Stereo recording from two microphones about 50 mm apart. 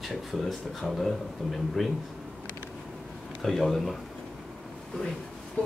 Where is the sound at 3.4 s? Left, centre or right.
Centre.